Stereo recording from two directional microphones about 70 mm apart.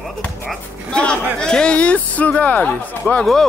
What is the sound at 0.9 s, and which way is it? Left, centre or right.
Speech, centre.